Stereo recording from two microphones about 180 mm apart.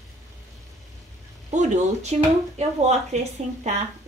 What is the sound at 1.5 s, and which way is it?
A woman's voice, 40° right (ahead or behind).